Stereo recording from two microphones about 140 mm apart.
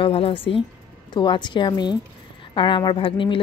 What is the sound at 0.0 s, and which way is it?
A woman's voice, 40° left (ahead or behind).